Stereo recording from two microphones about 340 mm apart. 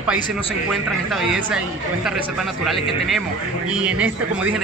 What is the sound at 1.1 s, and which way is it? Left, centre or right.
Speech, centre.